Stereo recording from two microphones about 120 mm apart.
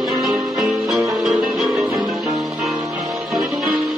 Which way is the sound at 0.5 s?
5° right (ahead or behind).